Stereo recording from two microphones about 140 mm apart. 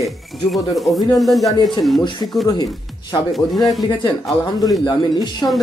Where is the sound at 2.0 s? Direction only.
30° left (ahead or behind).